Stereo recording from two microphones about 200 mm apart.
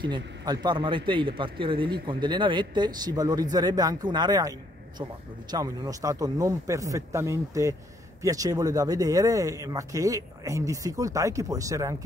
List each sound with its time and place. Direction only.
0.0 s speech: 20° right (ahead or behind)